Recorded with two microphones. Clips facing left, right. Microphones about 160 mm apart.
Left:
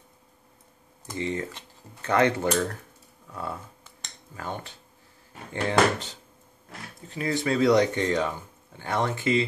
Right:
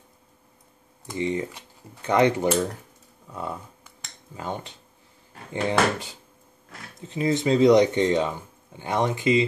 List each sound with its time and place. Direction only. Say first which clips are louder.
1.1 s speech: right 3 dB; 15° right (ahead or behind)
2.4 s speech: right 3 dB; 5° right (ahead or behind)
3.3 s cutlery: right 2 dB; 15° right (ahead or behind)
5.5 s speech: even; 15° right (ahead or behind)